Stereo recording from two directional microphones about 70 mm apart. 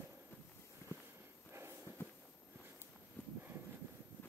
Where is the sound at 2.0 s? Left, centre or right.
Left.